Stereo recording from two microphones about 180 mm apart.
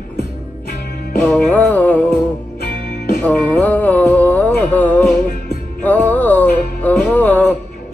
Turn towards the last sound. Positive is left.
turn(degrees=10)  # may be behind; listen again after turning